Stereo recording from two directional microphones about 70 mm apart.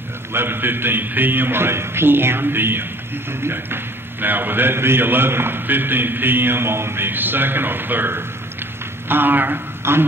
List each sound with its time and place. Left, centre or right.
0.3 s a man's voice: right